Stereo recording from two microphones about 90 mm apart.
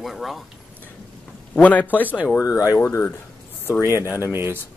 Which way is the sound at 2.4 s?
40° left (ahead or behind).